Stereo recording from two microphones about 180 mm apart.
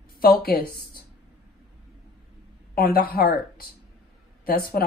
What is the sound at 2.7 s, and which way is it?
A woman's voice, 55° left (ahead or behind).